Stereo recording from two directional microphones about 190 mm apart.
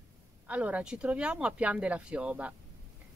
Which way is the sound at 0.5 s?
5° right (ahead or behind).